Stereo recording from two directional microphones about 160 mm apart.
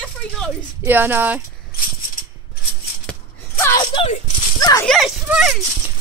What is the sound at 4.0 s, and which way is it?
Speech, 30° left (ahead or behind).